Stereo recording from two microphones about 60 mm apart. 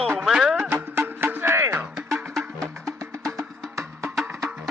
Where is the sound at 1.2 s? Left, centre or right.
Right.